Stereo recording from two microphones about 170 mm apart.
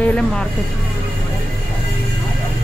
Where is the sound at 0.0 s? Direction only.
5° left (ahead or behind).